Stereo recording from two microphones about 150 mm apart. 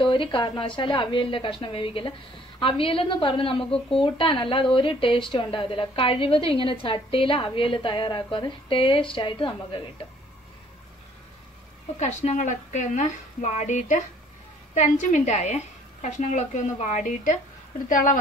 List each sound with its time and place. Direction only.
0.0 s speech: 35° left (ahead or behind)
12.0 s a woman's voice: 50° left (ahead or behind)